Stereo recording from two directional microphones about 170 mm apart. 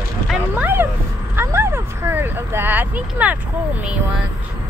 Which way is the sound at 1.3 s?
15° right (ahead or behind).